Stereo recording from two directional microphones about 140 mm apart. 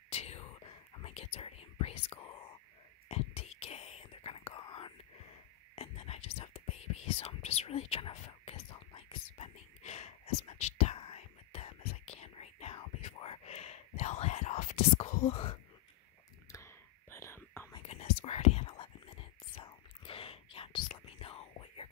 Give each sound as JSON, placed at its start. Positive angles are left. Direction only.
{"t": 0.1, "sound": "whispering", "side_deg": 50}
{"t": 16.5, "sound": "whispering", "side_deg": 20}
{"t": 17.8, "sound": "whispering", "side_deg": 50}